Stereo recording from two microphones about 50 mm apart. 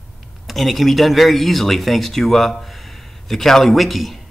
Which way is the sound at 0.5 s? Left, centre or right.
Centre.